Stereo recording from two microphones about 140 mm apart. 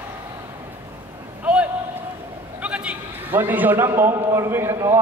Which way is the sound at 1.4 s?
10° right (ahead or behind).